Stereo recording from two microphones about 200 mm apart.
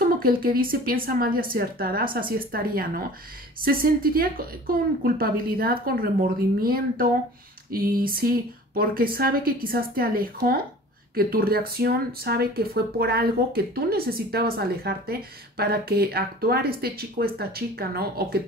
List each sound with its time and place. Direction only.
0.0 s speech: 45° right (ahead or behind)